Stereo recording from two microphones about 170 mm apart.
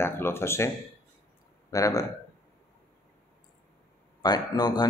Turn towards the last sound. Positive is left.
turn(degrees=25)  # may be behind; listen again after turning